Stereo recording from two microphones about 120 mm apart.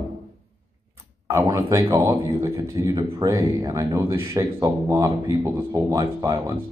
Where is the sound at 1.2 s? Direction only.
25° right (ahead or behind).